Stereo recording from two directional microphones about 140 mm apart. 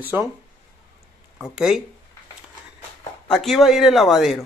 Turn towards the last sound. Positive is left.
turn(degrees=0)  # may be behind; listen again after turning